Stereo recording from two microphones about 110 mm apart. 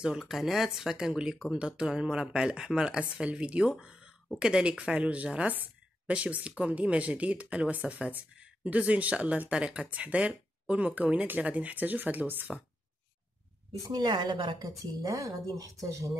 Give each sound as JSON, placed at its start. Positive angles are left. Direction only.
{"t": 0.0, "sound": "speech", "side_deg": -5}
{"t": 13.8, "sound": "speech", "side_deg": -35}
{"t": 14.6, "sound": "speech", "side_deg": -30}